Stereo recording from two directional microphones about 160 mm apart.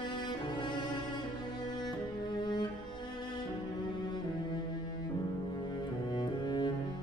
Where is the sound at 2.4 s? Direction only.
30° left (ahead or behind).